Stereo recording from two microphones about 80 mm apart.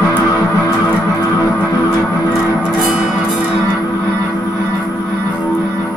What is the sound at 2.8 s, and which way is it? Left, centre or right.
Music, centre.